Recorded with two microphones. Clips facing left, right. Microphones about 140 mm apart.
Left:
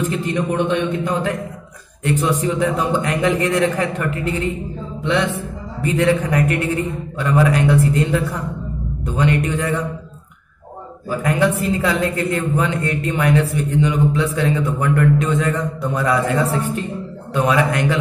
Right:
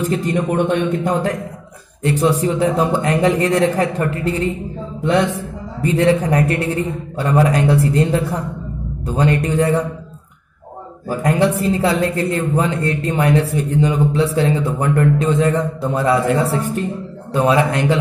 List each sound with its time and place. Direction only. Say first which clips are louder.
0.0 s a man's voice: right 2 dB; 40° right (ahead or behind)
11.1 s a man's voice: right 2 dB; 35° right (ahead or behind)